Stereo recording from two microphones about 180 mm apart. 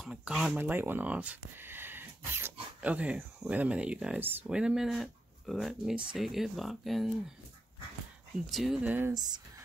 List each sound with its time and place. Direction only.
0.0 s speech: 5° right (ahead or behind)
8.5 s speech: centre (ahead or behind)
9.1 s speech: 20° right (ahead or behind)